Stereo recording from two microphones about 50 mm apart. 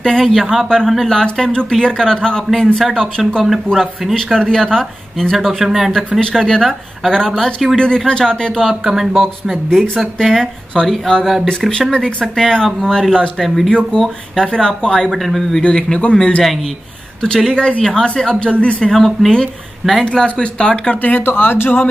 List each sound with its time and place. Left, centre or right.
0.0 s speech: centre
6.2 s speech: centre
8.8 s speech: centre
10.9 s speech: centre
15.0 s speech: centre
15.6 s speech: centre
17.5 s speech: centre
18.9 s speech: centre
20.1 s speech: centre
21.3 s speech: left